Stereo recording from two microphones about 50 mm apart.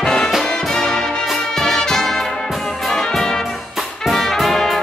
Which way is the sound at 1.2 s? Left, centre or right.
Centre.